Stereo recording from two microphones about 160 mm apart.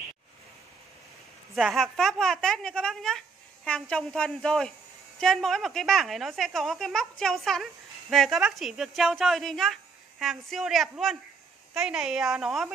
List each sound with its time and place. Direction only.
1.5 s a woman's voice: centre (ahead or behind)